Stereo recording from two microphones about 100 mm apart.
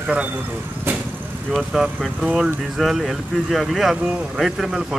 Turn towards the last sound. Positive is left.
turn(degrees=-5)  # may be behind; listen again after turning